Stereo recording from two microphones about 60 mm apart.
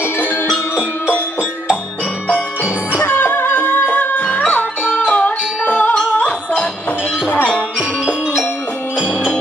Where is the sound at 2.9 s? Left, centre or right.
Left.